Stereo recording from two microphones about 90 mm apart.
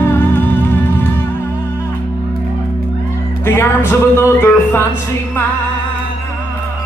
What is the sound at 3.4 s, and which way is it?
Music, 25° left (ahead or behind).